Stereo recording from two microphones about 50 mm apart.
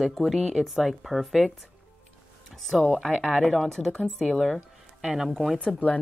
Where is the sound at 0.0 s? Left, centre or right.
Centre.